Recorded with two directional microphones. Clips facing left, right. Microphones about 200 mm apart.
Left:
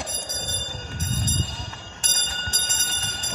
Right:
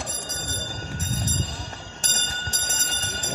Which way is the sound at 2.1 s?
50° right (ahead or behind).